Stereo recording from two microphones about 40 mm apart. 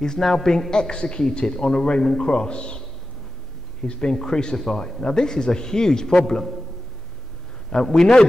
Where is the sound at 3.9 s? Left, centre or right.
Left.